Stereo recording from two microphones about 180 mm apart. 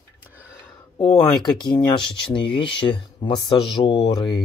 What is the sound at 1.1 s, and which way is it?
Speech, centre (ahead or behind).